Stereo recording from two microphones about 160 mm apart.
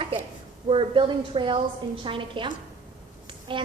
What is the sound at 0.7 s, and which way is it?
A woman's voice, 30° right (ahead or behind).